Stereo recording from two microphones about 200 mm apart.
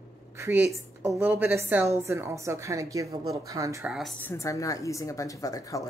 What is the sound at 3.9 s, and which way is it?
Speech, centre (ahead or behind).